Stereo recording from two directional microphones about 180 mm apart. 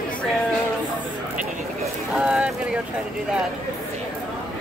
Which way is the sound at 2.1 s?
5° right (ahead or behind).